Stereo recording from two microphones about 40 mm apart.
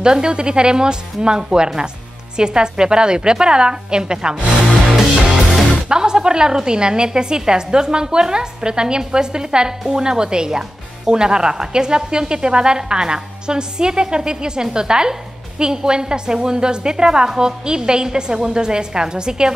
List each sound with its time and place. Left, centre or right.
0.0 s speech: right